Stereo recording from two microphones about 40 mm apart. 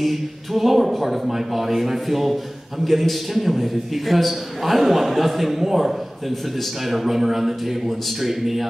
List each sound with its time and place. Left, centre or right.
0.0 s a man's voice: centre